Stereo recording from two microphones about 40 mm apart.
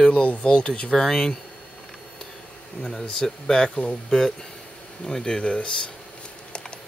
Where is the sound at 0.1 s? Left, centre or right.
Left.